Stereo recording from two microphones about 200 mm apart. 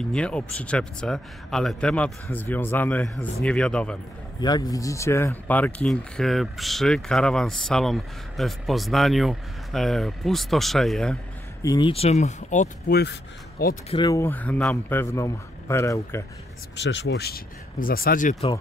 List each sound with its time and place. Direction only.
0.1 s a man's voice: 5° left (ahead or behind)
4.4 s speech: 20° left (ahead or behind); by 11.1 s centre (ahead or behind)
11.6 s speech: 20° left (ahead or behind); by 13.7 s 55° left (ahead or behind)
13.8 s a man's voice: 20° left (ahead or behind)
16.7 s speech: 60° left (ahead or behind); by 18.3 s 45° left (ahead or behind)
18.3 s speech: 20° left (ahead or behind)